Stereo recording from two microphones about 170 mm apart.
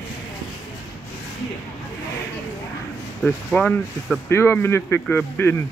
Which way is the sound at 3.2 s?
5° left (ahead or behind).